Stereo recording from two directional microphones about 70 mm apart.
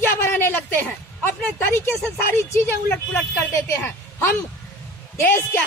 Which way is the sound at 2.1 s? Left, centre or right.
Left.